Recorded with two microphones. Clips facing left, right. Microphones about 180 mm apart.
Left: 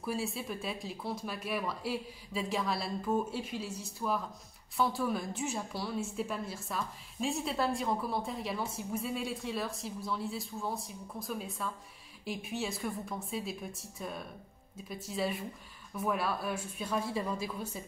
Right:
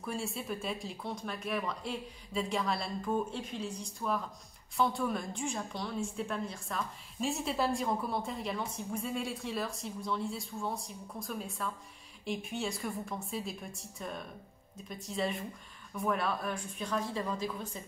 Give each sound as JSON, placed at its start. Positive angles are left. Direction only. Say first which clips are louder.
{"t": 0.0, "sound": "a woman's voice", "louder": "left 2 dB", "side_deg": 0}